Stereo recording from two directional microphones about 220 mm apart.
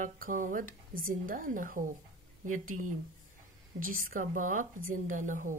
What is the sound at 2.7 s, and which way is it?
Speech, 80° right.